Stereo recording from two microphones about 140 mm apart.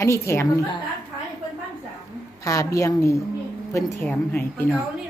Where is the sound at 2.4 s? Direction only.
25° left (ahead or behind).